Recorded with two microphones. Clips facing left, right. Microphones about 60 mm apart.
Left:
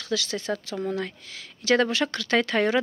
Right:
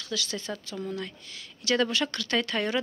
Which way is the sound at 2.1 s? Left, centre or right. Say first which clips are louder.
Left 5 dB; left.